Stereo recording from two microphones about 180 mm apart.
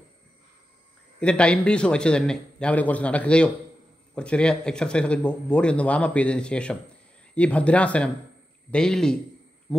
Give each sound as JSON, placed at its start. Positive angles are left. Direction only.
{"t": 1.2, "sound": "speech", "side_deg": 5}